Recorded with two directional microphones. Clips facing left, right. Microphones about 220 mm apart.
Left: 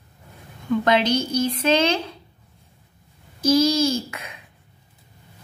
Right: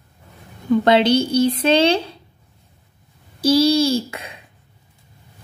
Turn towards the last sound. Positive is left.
turn(degrees=-30)  # may be behind; listen again after turning